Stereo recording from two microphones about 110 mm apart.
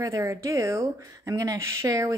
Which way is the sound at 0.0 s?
30° right (ahead or behind).